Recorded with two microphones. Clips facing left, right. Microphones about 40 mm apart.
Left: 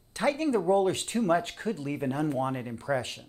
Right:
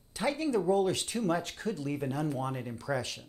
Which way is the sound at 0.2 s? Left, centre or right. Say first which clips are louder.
Left 3 dB; left.